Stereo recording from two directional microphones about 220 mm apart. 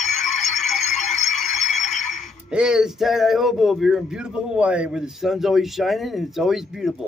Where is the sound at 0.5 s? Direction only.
30° left (ahead or behind).